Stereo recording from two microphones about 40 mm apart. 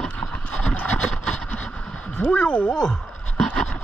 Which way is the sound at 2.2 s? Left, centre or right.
Left.